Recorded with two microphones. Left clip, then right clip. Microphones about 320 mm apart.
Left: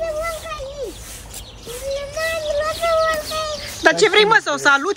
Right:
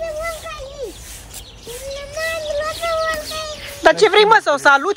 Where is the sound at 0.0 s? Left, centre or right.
Centre.